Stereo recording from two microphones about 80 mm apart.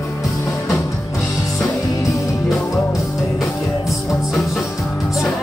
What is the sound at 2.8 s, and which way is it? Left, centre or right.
Music, centre.